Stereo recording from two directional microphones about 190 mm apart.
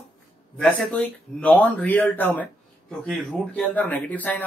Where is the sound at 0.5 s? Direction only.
5° left (ahead or behind).